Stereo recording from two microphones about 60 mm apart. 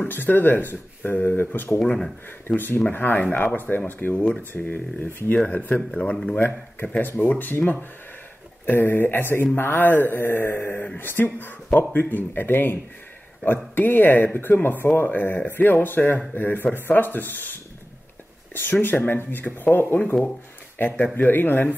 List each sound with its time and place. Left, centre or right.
0.1 s speech: left
8.6 s speech: left